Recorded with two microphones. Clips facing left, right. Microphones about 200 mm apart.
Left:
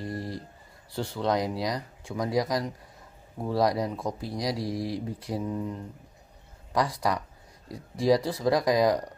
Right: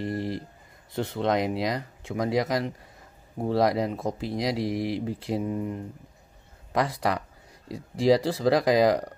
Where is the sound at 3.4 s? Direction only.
25° right (ahead or behind).